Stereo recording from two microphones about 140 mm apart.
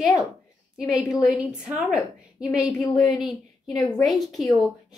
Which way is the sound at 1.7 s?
5° right (ahead or behind).